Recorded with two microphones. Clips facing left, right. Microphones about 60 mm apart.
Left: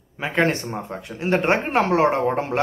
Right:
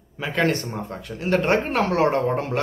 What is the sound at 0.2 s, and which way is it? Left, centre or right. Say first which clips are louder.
Speech: left 1 dB; left.